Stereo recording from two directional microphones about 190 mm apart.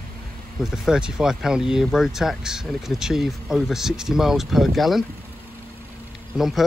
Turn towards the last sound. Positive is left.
turn(degrees=0)  # may be behind; listen again after turning